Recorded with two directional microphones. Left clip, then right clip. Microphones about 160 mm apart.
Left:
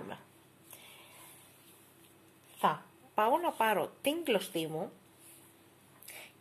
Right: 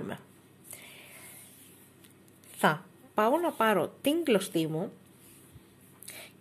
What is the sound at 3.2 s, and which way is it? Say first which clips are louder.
A woman's voice: right 3 dB; 25° right (ahead or behind).